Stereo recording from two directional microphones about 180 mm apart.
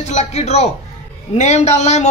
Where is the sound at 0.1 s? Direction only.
35° left (ahead or behind).